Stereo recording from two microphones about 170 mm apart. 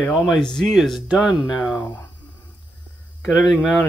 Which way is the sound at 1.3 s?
25° left (ahead or behind).